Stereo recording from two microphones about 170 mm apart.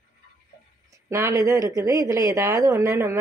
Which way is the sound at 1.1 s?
20° right (ahead or behind).